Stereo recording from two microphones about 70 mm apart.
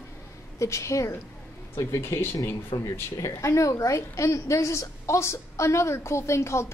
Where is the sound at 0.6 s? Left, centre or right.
Left.